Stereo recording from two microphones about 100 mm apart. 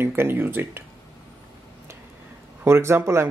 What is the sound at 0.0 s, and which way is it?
Speech, 20° right (ahead or behind).